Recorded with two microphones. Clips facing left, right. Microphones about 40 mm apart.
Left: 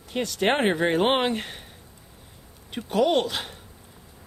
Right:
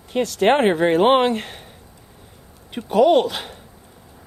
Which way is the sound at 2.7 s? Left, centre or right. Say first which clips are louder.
Right 7 dB; centre.